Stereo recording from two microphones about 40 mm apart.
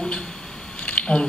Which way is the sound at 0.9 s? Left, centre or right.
Left.